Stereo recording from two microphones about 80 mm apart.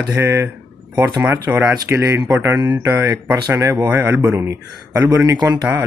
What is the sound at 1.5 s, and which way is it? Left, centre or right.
Speech, centre.